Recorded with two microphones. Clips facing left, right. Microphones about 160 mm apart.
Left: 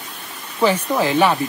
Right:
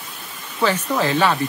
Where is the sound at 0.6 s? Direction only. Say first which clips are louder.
Left 2 dB; 15° left (ahead or behind).